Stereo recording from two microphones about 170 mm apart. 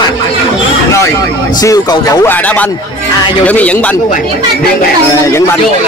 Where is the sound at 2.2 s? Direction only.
10° left (ahead or behind).